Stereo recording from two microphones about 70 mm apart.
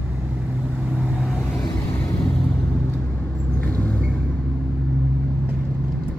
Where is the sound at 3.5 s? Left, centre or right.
Left.